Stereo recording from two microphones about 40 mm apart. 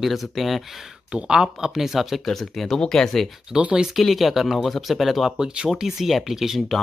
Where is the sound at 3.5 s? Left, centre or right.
Centre.